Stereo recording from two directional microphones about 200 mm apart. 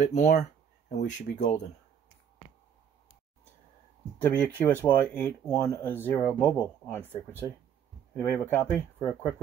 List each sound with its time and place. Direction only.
0.0 s speech: 35° left (ahead or behind)
4.2 s speech: 10° left (ahead or behind)